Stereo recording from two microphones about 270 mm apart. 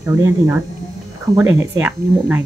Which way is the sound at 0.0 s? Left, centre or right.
Centre.